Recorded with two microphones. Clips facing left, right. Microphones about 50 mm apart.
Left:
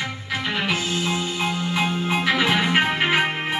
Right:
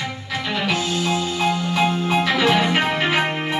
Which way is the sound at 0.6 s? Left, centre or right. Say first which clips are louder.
Right 4 dB; left.